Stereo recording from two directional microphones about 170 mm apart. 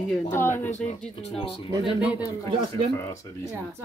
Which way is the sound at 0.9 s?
35° left (ahead or behind).